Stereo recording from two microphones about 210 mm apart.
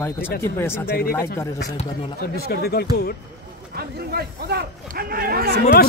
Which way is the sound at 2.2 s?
45° left (ahead or behind).